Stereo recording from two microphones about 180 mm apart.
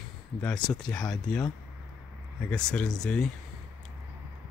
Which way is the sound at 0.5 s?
25° left (ahead or behind).